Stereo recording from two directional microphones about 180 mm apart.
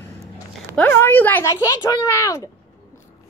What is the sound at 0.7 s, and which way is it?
Speech, 10° left (ahead or behind).